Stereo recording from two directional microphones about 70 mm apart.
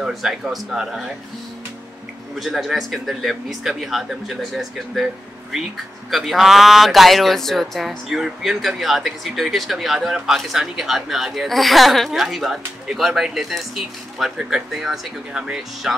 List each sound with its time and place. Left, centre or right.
0.0 s speech: centre
2.3 s speech: centre
6.0 s speech: centre